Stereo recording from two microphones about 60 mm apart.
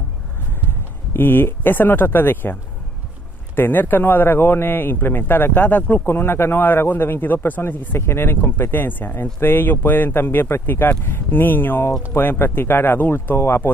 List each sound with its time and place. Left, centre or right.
0.5 s a man's voice: left